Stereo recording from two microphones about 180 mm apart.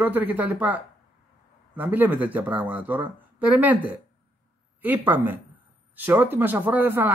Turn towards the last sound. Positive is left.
turn(degrees=-10)  # may be behind; listen again after turning